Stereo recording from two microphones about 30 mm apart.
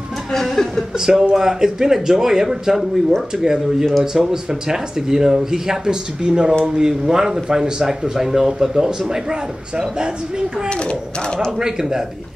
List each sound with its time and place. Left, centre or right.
0.3 s speech: centre
0.9 s speech: centre
8.5 s speech: right
10.7 s a child's voice: left
11.5 s speech: centre